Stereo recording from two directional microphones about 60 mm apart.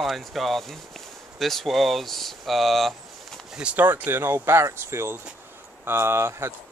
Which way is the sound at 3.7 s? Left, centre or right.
Right.